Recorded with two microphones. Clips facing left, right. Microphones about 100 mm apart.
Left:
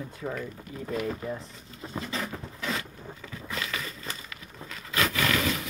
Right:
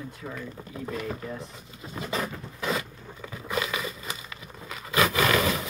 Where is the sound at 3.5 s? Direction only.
15° right (ahead or behind).